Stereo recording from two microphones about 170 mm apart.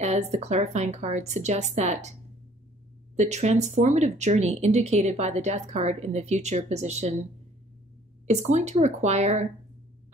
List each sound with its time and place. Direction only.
0.0 s speech: 40° right (ahead or behind)
3.2 s speech: 40° right (ahead or behind)
8.3 s speech: 40° right (ahead or behind)